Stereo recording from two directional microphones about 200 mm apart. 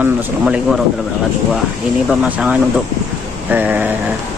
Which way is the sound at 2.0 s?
5° right (ahead or behind).